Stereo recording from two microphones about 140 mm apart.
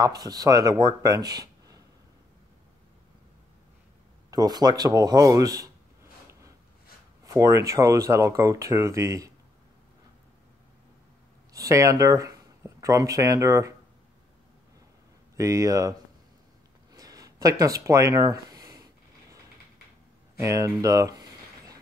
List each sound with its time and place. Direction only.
0.0 s speech: 25° right (ahead or behind)
4.3 s speech: 25° right (ahead or behind)
7.2 s speech: 25° right (ahead or behind)
11.5 s speech: 25° right (ahead or behind)
15.3 s speech: 25° right (ahead or behind)
16.9 s a sound: 25° right (ahead or behind)
20.3 s a sound: 20° right (ahead or behind)